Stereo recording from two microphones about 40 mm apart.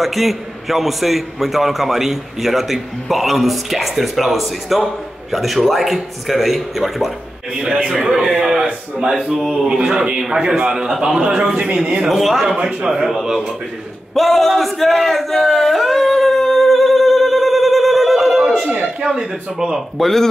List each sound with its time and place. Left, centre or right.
0.0 s a man's voice: centre
7.5 s a man's voice: right
7.9 s a man's voice: centre
12.1 s a man's voice: centre
12.5 s speech: centre
14.1 s a sound: centre
19.0 s speech: centre
20.0 s a man's voice: centre